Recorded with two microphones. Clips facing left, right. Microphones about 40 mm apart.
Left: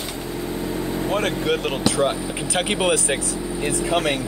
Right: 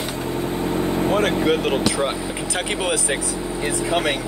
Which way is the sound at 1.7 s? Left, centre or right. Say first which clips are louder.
Even; centre.